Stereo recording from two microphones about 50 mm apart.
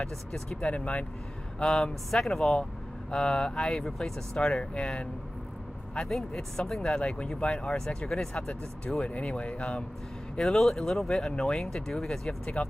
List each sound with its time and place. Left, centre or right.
0.0 s speech: centre
1.6 s speech: centre
9.0 s speech: left
10.4 s speech: centre
12.6 s speech: left